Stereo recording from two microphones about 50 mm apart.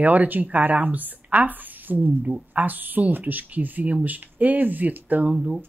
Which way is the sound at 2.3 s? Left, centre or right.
Right.